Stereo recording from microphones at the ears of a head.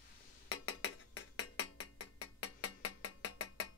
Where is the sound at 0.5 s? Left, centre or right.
Left.